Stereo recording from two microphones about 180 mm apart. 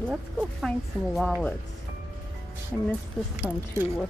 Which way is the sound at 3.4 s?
5° right (ahead or behind).